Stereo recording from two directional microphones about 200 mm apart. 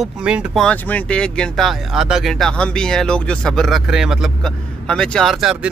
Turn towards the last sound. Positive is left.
turn(degrees=0)  # may be behind; listen again after turning